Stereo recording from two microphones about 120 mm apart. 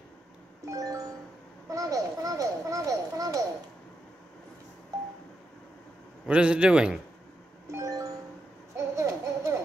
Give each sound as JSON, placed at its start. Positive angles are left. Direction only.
{"t": 0.7, "sound": "music", "side_deg": -30}
{"t": 1.7, "sound": "a child's voice", "side_deg": -25}
{"t": 6.2, "sound": "a man's voice", "side_deg": -10}
{"t": 7.6, "sound": "music", "side_deg": -25}
{"t": 8.7, "sound": "laughter", "side_deg": -25}